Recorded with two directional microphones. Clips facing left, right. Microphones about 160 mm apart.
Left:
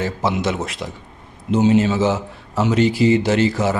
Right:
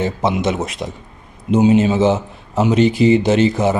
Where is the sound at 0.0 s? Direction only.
20° right (ahead or behind).